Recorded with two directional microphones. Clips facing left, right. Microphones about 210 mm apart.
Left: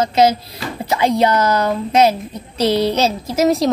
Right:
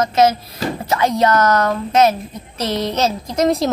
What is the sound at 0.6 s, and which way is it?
Music, 40° right (ahead or behind).